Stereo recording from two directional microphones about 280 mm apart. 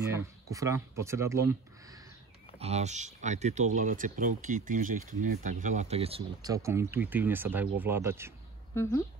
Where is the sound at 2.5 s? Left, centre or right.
Right.